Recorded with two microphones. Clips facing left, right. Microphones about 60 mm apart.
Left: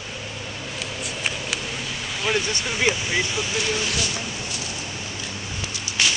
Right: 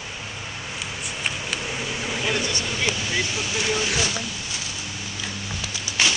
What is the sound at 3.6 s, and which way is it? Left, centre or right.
Speech, centre.